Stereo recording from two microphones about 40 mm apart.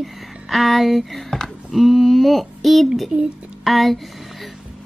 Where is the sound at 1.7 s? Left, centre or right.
Centre.